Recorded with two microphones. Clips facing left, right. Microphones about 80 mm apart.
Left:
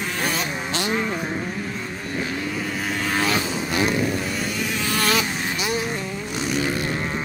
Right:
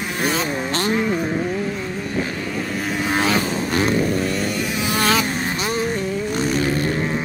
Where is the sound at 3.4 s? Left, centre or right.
Right.